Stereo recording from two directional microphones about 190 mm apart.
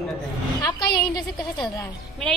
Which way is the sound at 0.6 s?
20° left (ahead or behind).